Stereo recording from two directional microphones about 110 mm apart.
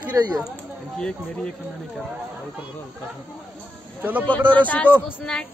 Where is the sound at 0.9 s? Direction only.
5° left (ahead or behind).